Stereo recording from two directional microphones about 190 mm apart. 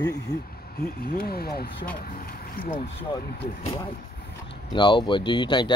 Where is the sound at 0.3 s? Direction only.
50° left (ahead or behind).